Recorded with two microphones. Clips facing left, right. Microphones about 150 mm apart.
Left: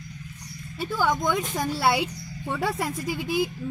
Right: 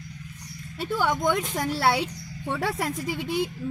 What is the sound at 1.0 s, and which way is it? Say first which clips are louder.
Speech: even; 5° right (ahead or behind).